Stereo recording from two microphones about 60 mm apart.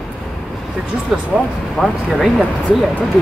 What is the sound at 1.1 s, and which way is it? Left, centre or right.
Speech, centre.